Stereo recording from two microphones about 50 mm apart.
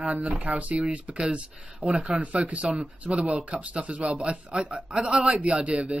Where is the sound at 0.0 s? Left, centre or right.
Right.